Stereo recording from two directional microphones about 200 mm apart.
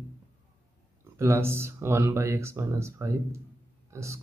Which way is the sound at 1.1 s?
15° right (ahead or behind).